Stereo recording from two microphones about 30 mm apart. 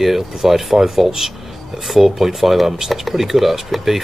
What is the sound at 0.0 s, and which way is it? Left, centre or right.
Speech, centre.